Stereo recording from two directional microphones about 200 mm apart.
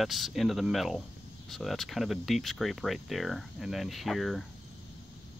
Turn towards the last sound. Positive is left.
turn(degrees=0)  # may be behind; listen again after turning